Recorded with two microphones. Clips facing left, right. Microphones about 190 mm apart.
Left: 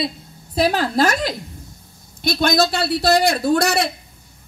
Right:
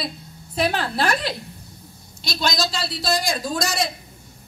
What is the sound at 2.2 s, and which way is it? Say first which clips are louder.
A man's voice: left 7 dB; 55° left (ahead or behind).